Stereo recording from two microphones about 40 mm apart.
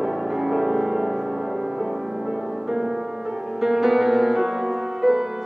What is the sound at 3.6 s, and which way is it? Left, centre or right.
Music, centre.